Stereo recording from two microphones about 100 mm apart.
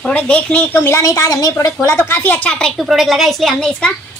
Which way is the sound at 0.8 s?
30° left (ahead or behind).